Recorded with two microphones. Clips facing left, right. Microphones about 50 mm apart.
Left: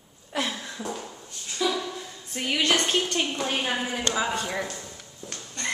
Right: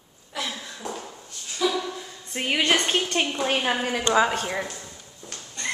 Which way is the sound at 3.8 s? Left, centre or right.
Right.